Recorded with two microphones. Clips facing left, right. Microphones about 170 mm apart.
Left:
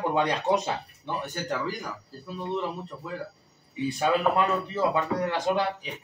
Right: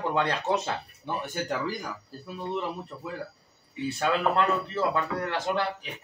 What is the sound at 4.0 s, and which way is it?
Speech, 15° left (ahead or behind).